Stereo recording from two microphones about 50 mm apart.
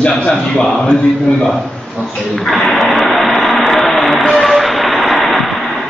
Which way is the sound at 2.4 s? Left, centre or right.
Centre.